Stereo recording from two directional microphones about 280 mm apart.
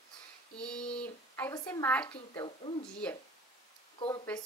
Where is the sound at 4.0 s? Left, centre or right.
Centre.